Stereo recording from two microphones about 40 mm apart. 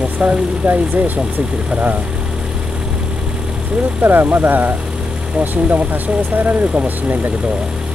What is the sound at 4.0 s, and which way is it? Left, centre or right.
Speech, right.